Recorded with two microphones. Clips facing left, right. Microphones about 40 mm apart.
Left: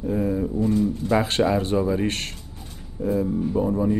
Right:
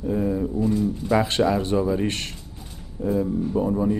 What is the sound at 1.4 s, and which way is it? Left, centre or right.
Speech, centre.